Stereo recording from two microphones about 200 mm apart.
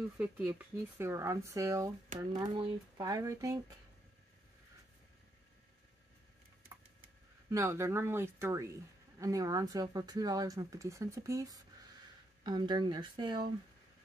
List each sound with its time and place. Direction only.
0.2 s speech: 5° right (ahead or behind)
6.7 s a sound: 15° right (ahead or behind)
7.4 s speech: 15° right (ahead or behind)